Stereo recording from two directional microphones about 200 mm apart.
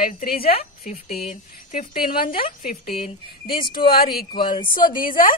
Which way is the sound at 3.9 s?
50° left (ahead or behind).